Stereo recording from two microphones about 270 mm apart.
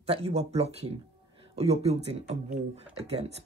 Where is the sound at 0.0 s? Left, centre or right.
Right.